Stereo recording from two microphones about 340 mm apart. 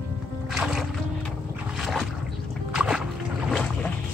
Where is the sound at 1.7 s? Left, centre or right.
Centre.